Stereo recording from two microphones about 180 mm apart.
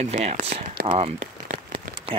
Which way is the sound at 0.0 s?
40° right (ahead or behind).